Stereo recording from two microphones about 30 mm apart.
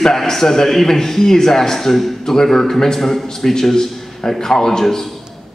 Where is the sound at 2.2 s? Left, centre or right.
Centre.